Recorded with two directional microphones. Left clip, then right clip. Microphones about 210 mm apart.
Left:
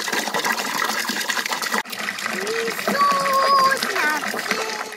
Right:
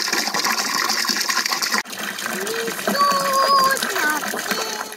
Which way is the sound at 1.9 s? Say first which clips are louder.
Left 1 dB; 55° right (ahead or behind).